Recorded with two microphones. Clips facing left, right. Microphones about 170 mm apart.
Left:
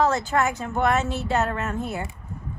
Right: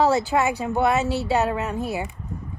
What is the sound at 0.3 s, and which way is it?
A woman's voice, 15° right (ahead or behind).